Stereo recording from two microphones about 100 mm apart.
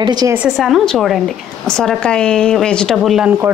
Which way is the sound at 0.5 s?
Centre (ahead or behind).